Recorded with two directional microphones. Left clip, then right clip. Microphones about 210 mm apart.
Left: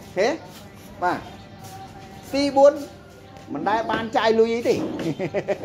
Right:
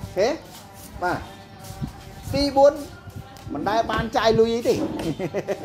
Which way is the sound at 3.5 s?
Centre (ahead or behind).